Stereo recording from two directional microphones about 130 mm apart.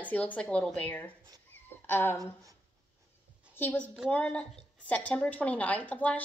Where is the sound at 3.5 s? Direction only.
15° left (ahead or behind).